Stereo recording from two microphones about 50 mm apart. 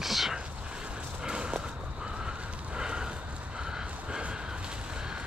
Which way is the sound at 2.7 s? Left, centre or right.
Centre.